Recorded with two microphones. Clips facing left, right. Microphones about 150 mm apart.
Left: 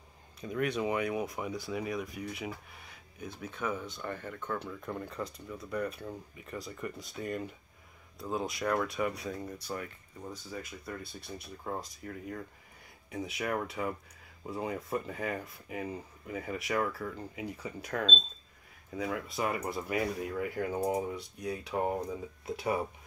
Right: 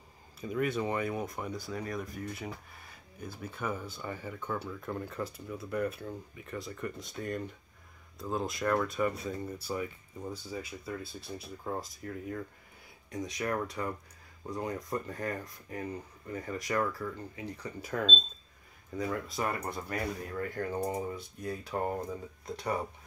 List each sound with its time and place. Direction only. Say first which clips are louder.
0.4 s speech: right 1 dB; centre (ahead or behind)
11.0 s speech: right 2 dB; 55° left (ahead or behind)
11.6 s speech: right 1 dB; centre (ahead or behind)